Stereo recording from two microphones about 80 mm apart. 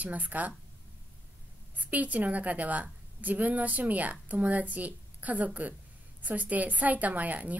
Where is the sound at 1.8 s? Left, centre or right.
Centre.